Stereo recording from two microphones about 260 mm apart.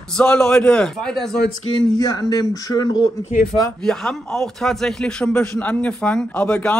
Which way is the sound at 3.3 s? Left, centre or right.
Left.